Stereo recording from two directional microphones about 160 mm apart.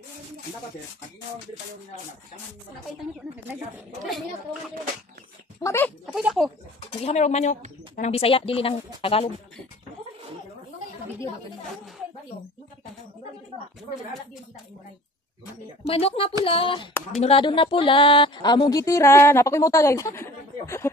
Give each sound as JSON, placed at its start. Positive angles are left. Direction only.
{"t": 3.7, "sound": "a woman's voice", "side_deg": 0}
{"t": 5.6, "sound": "speech", "side_deg": 15}
{"t": 6.1, "sound": "a woman's voice", "side_deg": 0}
{"t": 7.0, "sound": "speech", "side_deg": 45}
{"t": 15.9, "sound": "a woman's voice", "side_deg": 35}